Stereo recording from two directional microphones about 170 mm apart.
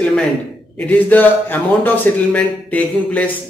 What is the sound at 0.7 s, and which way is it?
A man's voice, 10° left (ahead or behind).